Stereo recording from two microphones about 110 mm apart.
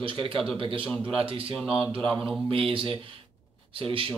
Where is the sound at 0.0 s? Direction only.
55° right (ahead or behind).